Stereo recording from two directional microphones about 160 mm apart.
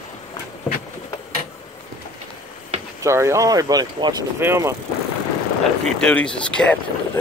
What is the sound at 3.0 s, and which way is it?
Speech, 20° right (ahead or behind).